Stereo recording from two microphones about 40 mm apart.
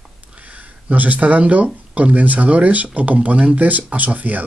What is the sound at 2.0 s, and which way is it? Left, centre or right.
Speech, right.